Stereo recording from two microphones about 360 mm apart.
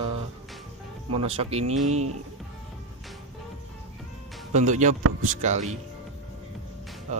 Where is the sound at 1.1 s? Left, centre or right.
Centre.